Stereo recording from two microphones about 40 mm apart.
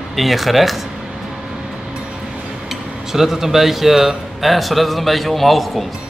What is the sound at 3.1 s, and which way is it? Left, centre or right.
Speech, centre.